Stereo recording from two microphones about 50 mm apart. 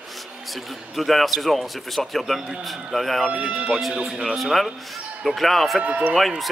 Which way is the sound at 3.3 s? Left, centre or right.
Right.